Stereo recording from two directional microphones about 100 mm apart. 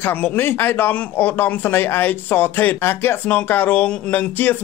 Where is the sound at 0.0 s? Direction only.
15° left (ahead or behind).